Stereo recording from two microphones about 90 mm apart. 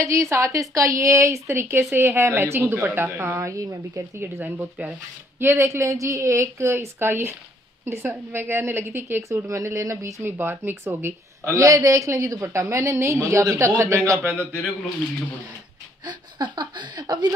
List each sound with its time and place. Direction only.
0.0 s a woman's voice: 35° right (ahead or behind)
10.2 s speech: 25° right (ahead or behind)
16.1 s speech: 55° right (ahead or behind)